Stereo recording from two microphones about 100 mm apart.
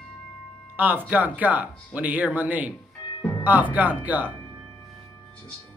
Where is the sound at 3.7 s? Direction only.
15° right (ahead or behind).